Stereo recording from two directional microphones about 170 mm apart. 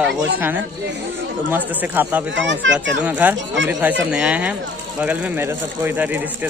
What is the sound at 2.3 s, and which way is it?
Speech, 90° right.